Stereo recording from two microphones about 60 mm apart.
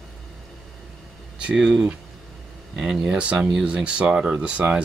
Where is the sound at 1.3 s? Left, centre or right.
Centre.